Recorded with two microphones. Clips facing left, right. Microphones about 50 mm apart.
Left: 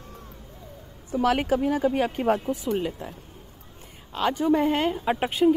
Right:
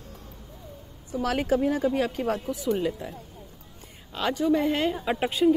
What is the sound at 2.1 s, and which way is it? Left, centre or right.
Speech, left.